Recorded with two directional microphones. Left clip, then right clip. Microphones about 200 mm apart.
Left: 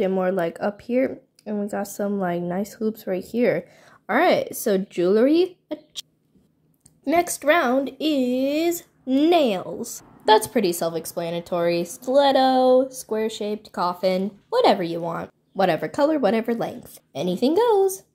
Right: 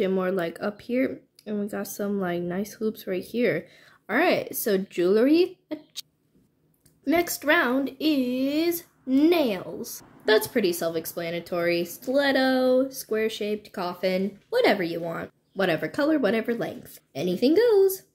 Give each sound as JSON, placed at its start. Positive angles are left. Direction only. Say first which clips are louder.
{"t": 0.0, "sound": "speech", "louder": "left 3 dB", "side_deg": 5}
{"t": 7.1, "sound": "speech", "louder": "left 3 dB", "side_deg": 20}